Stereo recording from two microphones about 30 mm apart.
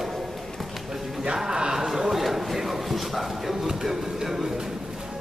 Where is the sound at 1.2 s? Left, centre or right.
Right.